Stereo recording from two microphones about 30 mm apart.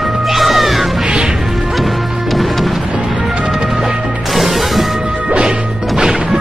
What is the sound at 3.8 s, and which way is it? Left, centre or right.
Music, centre.